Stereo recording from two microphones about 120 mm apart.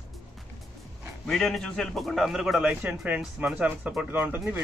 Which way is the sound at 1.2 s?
Centre (ahead or behind).